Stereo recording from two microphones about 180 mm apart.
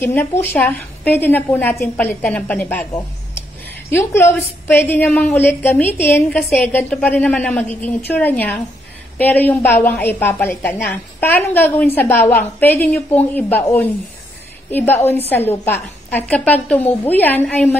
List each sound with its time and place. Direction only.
0.1 s a woman's voice: 10° left (ahead or behind)